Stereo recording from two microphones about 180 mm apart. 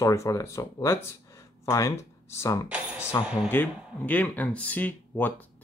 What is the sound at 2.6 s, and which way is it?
Music, 5° right (ahead or behind).